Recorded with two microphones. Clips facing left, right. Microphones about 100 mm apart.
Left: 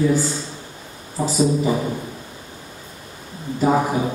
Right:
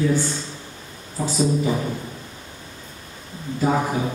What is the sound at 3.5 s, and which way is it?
Speech, 10° left (ahead or behind).